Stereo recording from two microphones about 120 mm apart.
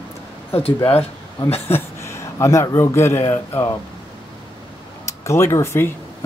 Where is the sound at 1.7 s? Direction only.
20° left (ahead or behind).